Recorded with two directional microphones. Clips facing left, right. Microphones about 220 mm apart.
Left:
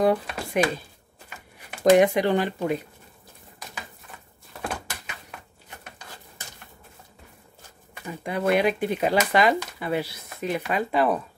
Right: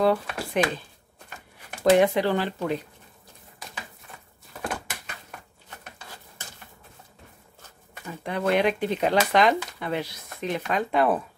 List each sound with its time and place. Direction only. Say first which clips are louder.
0.0 s speech: left 1 dB; 15° left (ahead or behind)
8.1 s speech: left 1 dB; 10° left (ahead or behind)